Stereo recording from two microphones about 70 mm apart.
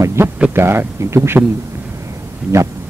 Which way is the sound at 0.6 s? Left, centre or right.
Right.